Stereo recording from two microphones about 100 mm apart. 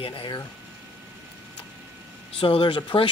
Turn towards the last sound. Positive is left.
turn(degrees=60)  # may be behind; listen again after turning